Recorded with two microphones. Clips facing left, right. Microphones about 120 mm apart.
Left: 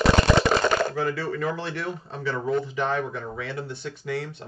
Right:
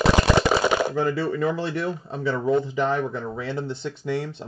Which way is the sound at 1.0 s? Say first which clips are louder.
Right 4 dB; 25° right (ahead or behind).